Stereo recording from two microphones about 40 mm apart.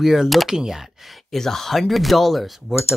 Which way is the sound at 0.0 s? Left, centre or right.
Centre.